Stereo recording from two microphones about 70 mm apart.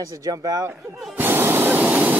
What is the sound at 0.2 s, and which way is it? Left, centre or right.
Speech, right.